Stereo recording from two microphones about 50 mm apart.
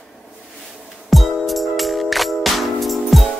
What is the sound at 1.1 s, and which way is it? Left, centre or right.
Music, centre.